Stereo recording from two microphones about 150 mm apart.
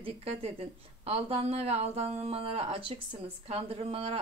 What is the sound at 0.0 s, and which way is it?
A woman's voice, 40° right (ahead or behind).